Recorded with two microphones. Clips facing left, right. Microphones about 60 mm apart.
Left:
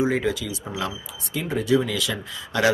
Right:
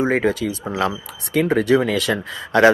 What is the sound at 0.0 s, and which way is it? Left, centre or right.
Speech, right.